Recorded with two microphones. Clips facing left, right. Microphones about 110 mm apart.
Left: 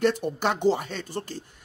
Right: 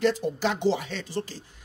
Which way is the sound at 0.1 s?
55° left (ahead or behind).